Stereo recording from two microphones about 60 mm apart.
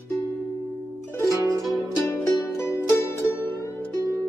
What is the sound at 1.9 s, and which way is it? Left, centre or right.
Music, left.